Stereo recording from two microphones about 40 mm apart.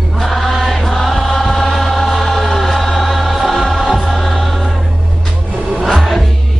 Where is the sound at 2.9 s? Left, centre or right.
Centre.